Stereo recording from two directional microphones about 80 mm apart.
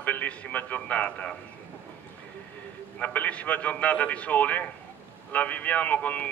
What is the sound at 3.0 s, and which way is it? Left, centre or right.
A man's voice, centre.